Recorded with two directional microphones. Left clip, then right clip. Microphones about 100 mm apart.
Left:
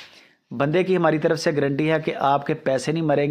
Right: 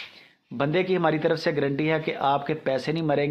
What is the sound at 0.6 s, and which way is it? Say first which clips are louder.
Speech: left 4 dB; 40° left (ahead or behind).